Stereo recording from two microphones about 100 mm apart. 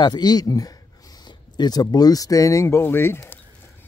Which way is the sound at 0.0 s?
45° left (ahead or behind).